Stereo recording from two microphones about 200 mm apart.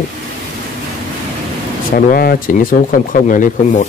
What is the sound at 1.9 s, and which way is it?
A man's voice, 45° left (ahead or behind).